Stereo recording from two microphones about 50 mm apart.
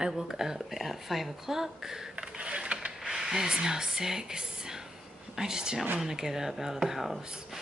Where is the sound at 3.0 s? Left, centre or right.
Centre.